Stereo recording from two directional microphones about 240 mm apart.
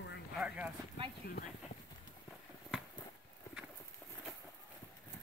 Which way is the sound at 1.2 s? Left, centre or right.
Left.